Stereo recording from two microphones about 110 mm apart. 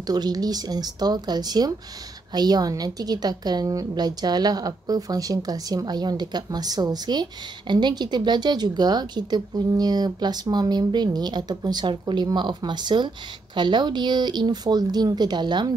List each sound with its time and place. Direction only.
0.0 s a woman's voice: 35° right (ahead or behind)